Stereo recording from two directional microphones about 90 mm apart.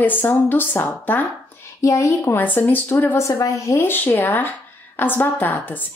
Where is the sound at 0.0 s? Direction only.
20° left (ahead or behind).